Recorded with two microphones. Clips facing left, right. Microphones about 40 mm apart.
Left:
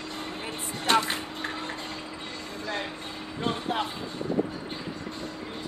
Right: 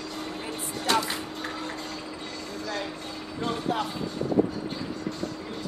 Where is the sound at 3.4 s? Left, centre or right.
Left.